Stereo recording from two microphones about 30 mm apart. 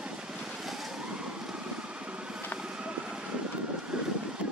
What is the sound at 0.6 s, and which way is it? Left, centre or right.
Vehicle, centre.